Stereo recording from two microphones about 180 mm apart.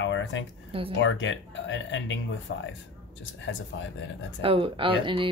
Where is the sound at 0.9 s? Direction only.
90° left.